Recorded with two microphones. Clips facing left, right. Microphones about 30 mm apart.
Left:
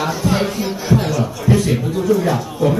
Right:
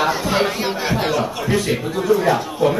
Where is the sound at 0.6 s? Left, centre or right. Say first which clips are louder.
Left 2 dB; right.